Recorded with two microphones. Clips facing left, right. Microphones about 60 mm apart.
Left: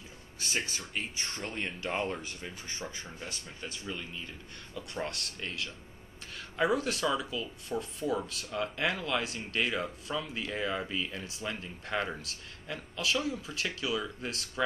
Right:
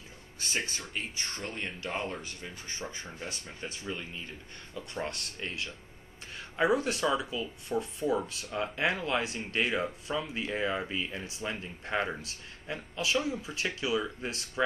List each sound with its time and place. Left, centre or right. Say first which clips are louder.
0.5 s speech: even; centre